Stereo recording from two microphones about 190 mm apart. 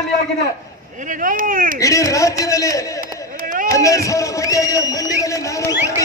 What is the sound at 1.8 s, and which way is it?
Speech, 15° left (ahead or behind).